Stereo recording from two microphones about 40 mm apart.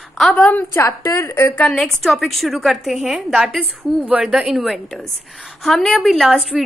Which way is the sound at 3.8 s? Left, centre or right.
Right.